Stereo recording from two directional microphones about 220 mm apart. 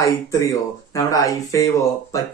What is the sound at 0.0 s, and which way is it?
Speech, 15° left (ahead or behind).